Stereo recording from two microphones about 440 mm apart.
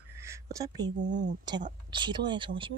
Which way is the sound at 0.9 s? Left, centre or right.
Right.